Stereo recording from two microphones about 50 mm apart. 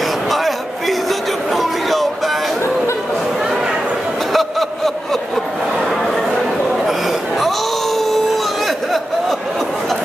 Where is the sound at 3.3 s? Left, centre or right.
Centre.